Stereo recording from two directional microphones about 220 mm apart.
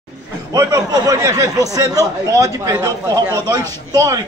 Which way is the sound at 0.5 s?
15° right (ahead or behind).